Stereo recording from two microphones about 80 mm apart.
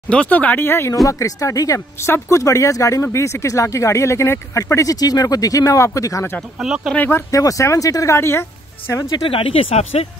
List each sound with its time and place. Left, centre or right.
0.1 s speech: centre; by 0.9 s left
1.0 s speech: left
6.6 s speech: centre
7.0 s speech: left
7.2 s speech: left
9.2 s speech: left